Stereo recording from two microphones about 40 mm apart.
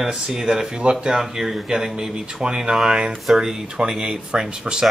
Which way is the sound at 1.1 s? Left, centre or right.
Centre.